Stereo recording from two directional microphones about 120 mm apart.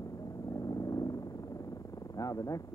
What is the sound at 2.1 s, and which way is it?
Speech, 30° left (ahead or behind).